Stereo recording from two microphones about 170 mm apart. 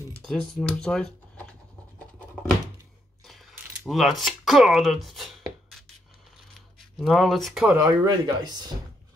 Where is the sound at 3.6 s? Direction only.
5° right (ahead or behind).